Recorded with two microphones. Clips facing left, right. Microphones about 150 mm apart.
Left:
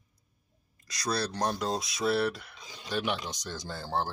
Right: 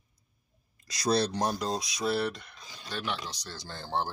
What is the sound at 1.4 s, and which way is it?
Speech, centre (ahead or behind).